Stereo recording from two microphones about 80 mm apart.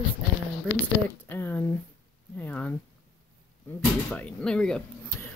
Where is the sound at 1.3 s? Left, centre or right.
Left.